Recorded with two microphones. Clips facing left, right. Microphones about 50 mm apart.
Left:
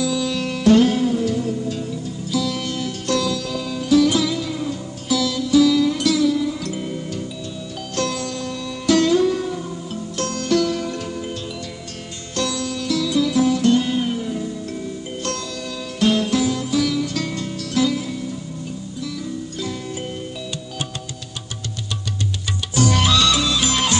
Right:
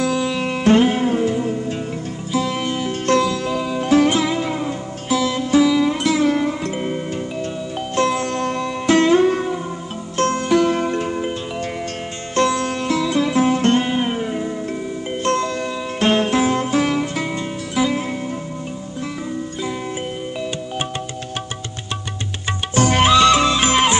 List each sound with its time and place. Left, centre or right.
0.0 s music: right
0.3 s music: right
7.9 s music: right
8.4 s music: right
12.4 s music: right
22.8 s music: right